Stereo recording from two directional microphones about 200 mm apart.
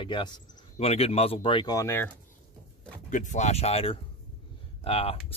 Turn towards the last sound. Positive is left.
turn(degrees=30)  # may be behind; listen again after turning